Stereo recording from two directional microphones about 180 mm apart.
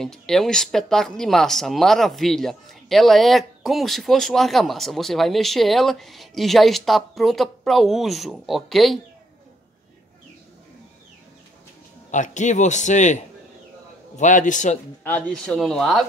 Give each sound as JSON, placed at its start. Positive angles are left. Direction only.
{"t": 0.0, "sound": "speech", "side_deg": 5}
{"t": 12.1, "sound": "a man's voice", "side_deg": 40}
{"t": 15.0, "sound": "speech", "side_deg": 10}